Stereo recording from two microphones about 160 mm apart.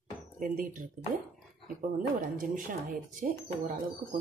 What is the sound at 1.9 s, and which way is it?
Speech, 55° right (ahead or behind).